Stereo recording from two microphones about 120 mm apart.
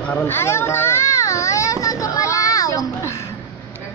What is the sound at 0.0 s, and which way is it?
A child's voice, 10° left (ahead or behind).